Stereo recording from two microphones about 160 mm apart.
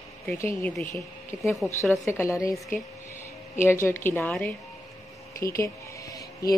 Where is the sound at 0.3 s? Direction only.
15° left (ahead or behind).